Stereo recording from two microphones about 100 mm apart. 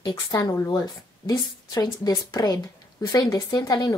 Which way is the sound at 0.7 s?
40° left (ahead or behind).